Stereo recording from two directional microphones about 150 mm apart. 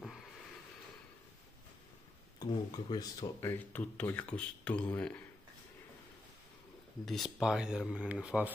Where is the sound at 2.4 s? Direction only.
25° left (ahead or behind); by 5.2 s 10° left (ahead or behind).